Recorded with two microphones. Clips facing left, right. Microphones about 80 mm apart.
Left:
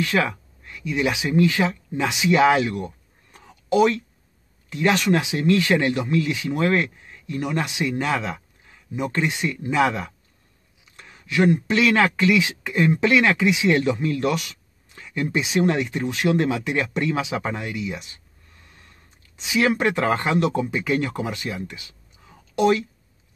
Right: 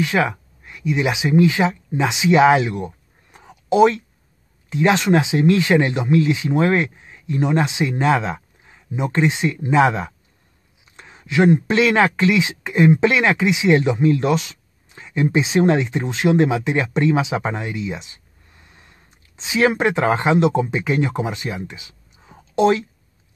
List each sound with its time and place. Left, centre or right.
0.0 s speech: centre